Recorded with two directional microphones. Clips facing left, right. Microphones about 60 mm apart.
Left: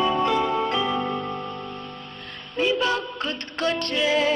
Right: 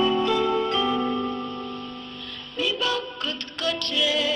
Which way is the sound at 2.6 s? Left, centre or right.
Left.